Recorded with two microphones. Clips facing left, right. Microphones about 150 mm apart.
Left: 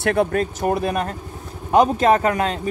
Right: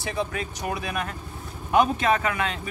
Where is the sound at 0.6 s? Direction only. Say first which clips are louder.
Left 6 dB; 40° left (ahead or behind).